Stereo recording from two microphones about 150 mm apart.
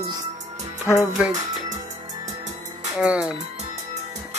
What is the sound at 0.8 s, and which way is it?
Speech, 5° right (ahead or behind).